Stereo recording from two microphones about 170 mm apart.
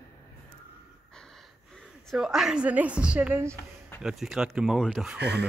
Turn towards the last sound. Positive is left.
turn(degrees=-80)